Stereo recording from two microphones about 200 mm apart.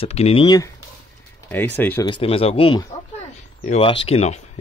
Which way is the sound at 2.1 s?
25° left (ahead or behind).